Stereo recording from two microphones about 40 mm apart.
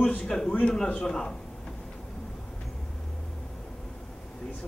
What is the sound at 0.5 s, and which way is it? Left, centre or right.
Speech, left.